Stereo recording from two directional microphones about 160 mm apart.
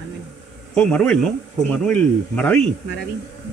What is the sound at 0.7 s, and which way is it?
A man's voice, 5° left (ahead or behind).